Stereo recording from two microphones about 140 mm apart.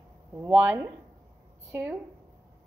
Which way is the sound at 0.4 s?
15° right (ahead or behind).